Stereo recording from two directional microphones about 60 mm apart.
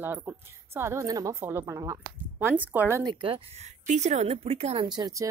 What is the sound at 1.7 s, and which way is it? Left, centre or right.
Speech, right.